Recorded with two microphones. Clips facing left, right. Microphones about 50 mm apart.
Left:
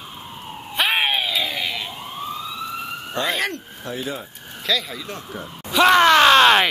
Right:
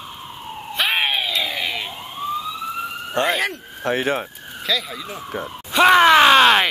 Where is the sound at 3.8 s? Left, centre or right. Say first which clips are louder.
Right 8 dB; right.